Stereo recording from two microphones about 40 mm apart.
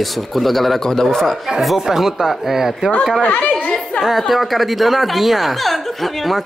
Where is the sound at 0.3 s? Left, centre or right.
Centre.